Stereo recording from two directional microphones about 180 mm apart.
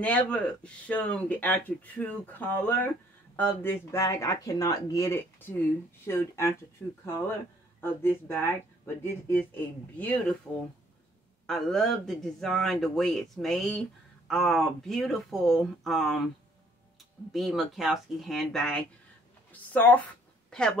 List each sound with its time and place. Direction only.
0.0 s speech: 10° left (ahead or behind)
11.4 s speech: centre (ahead or behind)
17.3 s speech: centre (ahead or behind)